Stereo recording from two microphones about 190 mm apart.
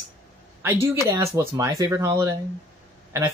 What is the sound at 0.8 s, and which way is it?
Speech, 15° right (ahead or behind).